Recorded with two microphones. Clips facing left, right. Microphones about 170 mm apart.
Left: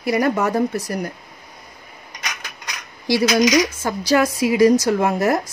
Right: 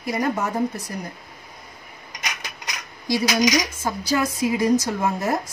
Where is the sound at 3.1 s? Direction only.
80° left.